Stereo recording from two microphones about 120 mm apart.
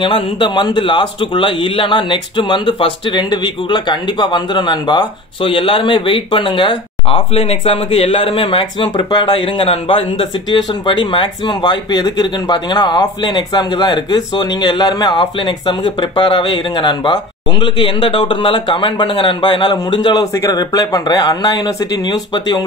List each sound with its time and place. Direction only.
0.0 s speech: 40° left (ahead or behind)